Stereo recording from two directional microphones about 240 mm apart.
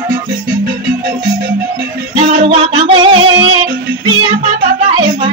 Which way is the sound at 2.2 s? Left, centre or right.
Right.